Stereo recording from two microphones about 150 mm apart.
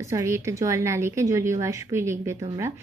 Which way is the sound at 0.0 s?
20° right (ahead or behind).